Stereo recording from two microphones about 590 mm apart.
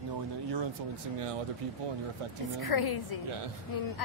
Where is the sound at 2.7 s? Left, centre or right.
Left.